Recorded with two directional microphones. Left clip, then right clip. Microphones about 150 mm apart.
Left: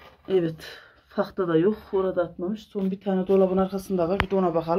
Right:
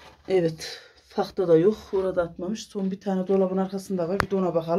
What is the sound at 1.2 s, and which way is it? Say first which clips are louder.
Speech: right 3 dB; 15° left (ahead or behind).